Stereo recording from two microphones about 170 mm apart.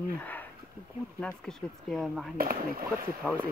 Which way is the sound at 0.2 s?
10° left (ahead or behind).